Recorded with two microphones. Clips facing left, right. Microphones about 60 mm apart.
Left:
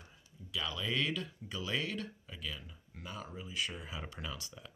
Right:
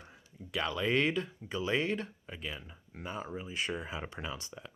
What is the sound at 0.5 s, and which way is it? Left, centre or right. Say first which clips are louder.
Speech: right 6 dB; right.